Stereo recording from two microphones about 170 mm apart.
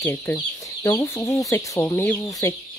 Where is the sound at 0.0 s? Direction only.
15° left (ahead or behind).